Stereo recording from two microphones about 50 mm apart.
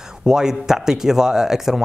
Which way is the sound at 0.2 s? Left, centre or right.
Centre.